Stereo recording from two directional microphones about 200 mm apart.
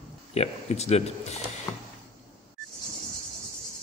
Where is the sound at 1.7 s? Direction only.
15° left (ahead or behind).